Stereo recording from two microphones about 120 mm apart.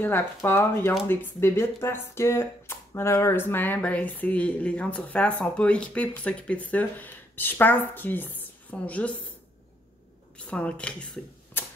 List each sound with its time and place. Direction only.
0.0 s speech: 20° left (ahead or behind)
10.3 s speech: 10° left (ahead or behind)